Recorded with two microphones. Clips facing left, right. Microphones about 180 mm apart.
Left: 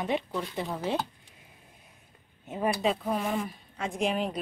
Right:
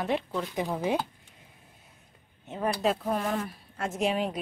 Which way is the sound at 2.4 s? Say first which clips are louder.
Even; 5° left (ahead or behind).